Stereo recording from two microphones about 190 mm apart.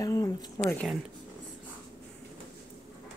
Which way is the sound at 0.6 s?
20° left (ahead or behind).